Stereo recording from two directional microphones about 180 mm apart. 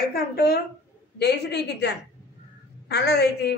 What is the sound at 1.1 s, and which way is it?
A woman's voice, 70° left (ahead or behind).